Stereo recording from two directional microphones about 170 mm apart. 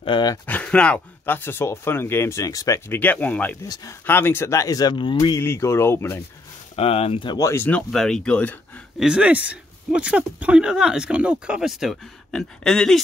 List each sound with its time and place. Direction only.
0.0 s speech: 25° left (ahead or behind)
0.5 s speech: 10° left (ahead or behind)
3.6 s speech: 20° left (ahead or behind)
5.4 s speech: 15° left (ahead or behind)
6.7 s speech: 35° left (ahead or behind); by 8.8 s 10° left (ahead or behind)
9.0 s speech: 5° right (ahead or behind)